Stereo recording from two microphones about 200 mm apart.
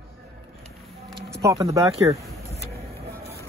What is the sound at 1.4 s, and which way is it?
Speech, 15° right (ahead or behind).